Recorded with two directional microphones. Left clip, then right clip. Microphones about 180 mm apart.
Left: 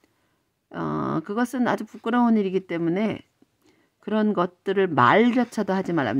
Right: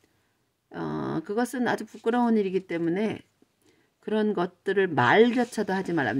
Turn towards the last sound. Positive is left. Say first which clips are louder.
# left 2 dB
turn(degrees=30)  # may be behind; listen again after turning